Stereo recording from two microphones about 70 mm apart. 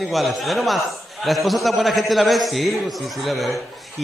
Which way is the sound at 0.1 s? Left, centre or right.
Centre.